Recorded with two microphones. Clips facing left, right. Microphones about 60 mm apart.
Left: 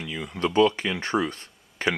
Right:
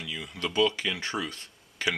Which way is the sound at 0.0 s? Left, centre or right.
Left.